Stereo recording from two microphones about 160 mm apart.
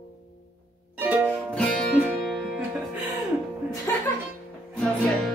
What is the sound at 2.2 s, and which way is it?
Music, centre (ahead or behind).